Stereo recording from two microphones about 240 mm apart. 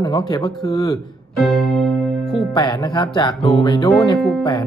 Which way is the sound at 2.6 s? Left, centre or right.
Centre.